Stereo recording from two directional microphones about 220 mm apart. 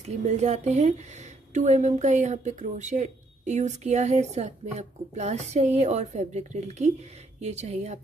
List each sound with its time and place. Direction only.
0.0 s speech: 30° right (ahead or behind)